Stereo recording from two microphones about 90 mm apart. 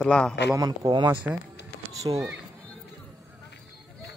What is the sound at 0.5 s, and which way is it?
Speech, 40° right (ahead or behind).